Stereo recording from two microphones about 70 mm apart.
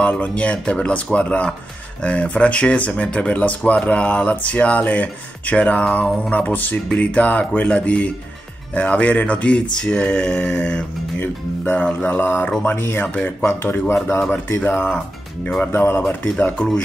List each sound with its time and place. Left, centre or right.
0.0 s speech: left
9.8 s a sound: centre
11.1 s speech: left
13.0 s speech: left